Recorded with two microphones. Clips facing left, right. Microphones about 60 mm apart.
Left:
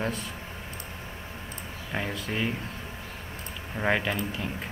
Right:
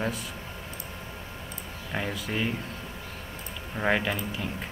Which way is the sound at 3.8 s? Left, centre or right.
Centre.